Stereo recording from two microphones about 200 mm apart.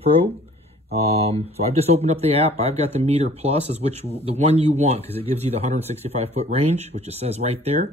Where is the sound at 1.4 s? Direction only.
30° right (ahead or behind).